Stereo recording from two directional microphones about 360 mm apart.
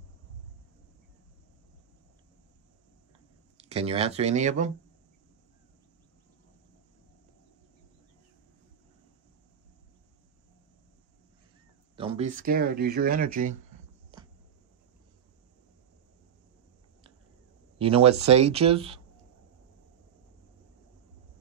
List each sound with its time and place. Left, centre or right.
3.6 s speech: centre
12.0 s speech: centre
14.1 s a sound: centre
17.7 s speech: centre